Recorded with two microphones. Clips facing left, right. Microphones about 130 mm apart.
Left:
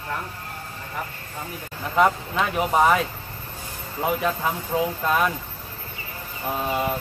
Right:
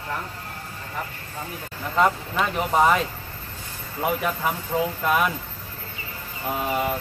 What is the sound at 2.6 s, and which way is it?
Speech, 10° left (ahead or behind).